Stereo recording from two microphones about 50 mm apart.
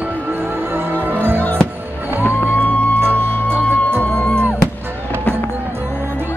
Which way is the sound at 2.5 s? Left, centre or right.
Left.